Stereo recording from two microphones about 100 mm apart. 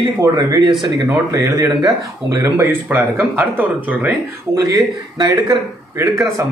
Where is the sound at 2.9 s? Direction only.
20° right (ahead or behind).